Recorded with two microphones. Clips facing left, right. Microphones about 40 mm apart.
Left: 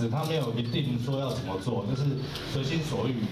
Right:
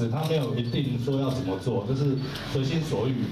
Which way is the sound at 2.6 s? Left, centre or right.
Left.